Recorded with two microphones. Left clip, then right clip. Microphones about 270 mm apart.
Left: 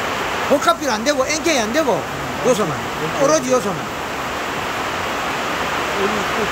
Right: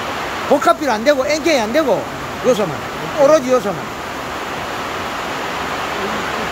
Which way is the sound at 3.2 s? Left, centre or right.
Centre.